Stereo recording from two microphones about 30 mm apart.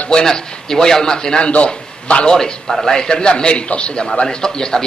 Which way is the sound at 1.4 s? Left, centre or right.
Left.